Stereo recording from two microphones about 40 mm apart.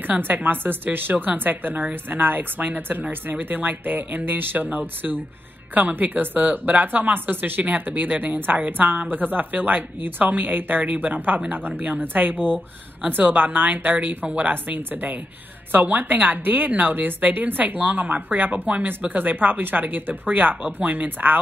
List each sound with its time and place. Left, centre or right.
0.0 s speech: right
11.1 s speech: right